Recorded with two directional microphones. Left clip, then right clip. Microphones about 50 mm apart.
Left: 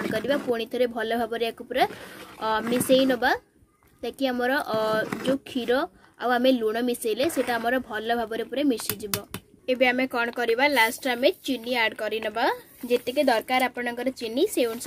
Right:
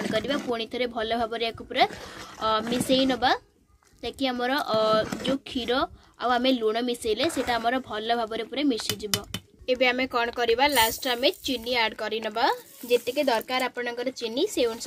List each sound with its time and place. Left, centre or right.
0.0 s a woman's voice: left